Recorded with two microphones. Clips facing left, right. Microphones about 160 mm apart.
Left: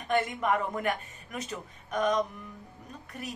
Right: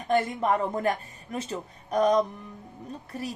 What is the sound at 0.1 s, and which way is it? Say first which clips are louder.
A woman's voice: right 3 dB; 30° right (ahead or behind).